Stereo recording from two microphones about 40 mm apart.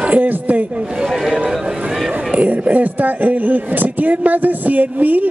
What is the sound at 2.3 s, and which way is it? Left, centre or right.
Speech, right.